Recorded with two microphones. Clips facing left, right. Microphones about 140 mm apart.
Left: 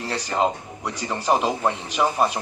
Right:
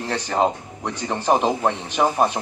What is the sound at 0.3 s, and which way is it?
Speech, 50° right (ahead or behind).